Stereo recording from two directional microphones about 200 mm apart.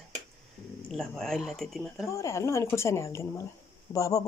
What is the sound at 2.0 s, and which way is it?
Speech, 15° left (ahead or behind).